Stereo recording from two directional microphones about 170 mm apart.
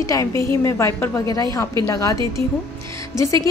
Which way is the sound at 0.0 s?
20° left (ahead or behind).